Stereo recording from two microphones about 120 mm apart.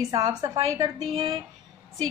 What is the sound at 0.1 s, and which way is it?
Speech, 35° right (ahead or behind).